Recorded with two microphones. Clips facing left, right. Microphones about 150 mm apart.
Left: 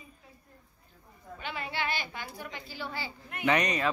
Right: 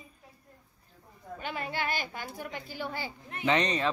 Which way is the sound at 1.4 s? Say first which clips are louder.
Right 1 dB; 45° right (ahead or behind).